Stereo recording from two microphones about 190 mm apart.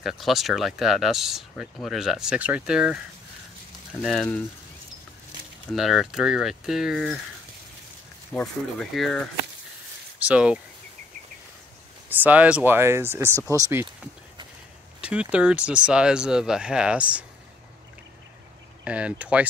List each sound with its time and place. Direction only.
0.0 s speech: centre (ahead or behind)
4.0 s speech: 5° left (ahead or behind)
5.7 s speech: centre (ahead or behind)
8.3 s speech: 5° left (ahead or behind)
12.1 s speech: 10° right (ahead or behind)
15.0 s speech: 5° right (ahead or behind)
18.9 s speech: 5° right (ahead or behind)